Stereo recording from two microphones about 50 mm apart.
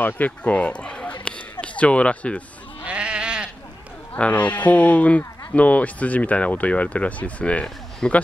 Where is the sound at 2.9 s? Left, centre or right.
Right.